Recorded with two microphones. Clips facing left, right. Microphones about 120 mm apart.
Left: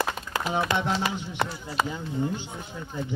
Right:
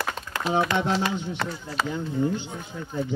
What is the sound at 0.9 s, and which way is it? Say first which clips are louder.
Speech: right 2 dB; 15° left (ahead or behind).